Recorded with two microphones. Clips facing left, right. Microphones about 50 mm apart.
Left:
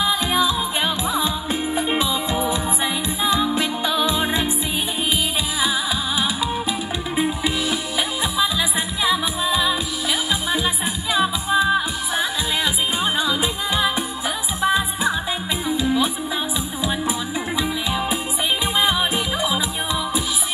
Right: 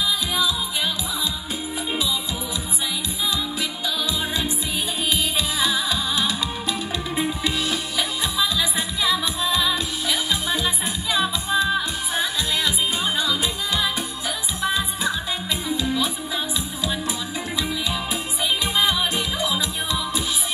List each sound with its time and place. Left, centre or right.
0.0 s music: left
3.3 s music: left
5.6 s music: centre
17.6 s music: centre